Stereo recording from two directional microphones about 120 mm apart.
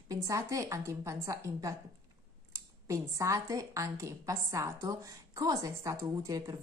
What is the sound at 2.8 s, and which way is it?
A woman's voice, 25° right (ahead or behind).